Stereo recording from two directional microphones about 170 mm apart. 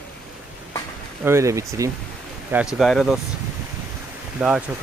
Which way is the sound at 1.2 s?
15° right (ahead or behind).